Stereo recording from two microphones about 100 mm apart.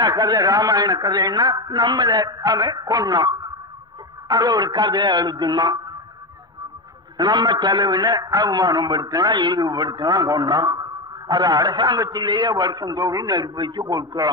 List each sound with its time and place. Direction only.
0.0 s a man's voice: 45° right (ahead or behind)
7.2 s a man's voice: 45° right (ahead or behind)
13.3 s a man's voice: 45° right (ahead or behind)